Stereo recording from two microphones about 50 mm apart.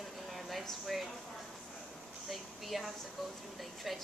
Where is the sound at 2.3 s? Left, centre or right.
Centre.